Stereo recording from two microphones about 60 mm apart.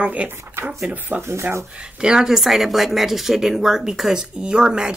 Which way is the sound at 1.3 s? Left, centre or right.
Right.